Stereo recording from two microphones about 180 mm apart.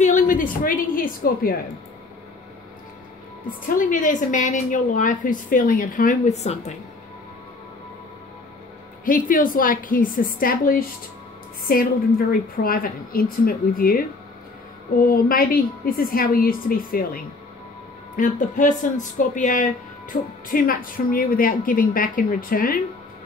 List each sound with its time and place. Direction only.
0.0 s a woman's voice: 45° left (ahead or behind)
3.6 s speech: 50° left (ahead or behind)
9.0 s speech: 50° left (ahead or behind)
15.0 s speech: 55° left (ahead or behind)